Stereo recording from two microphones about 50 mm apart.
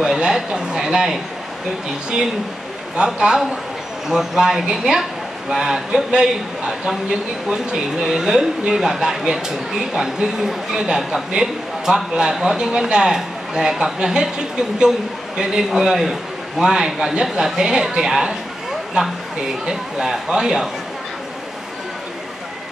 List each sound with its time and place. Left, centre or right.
0.0 s a man's voice: centre
3.0 s speech: centre
15.3 s speech: centre